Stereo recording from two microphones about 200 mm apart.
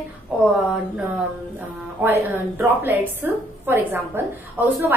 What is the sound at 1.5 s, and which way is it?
A woman's voice, 10° right (ahead or behind).